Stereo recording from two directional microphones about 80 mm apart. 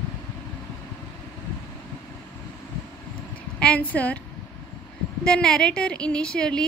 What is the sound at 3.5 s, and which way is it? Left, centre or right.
Speech, centre.